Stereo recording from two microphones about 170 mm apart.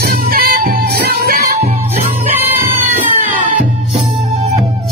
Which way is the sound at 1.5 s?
35° right (ahead or behind).